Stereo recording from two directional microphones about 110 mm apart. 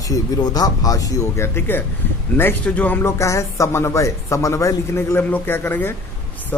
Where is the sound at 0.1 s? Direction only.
35° left (ahead or behind).